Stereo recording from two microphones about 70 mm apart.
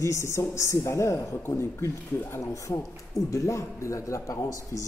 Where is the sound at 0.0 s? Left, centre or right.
Left.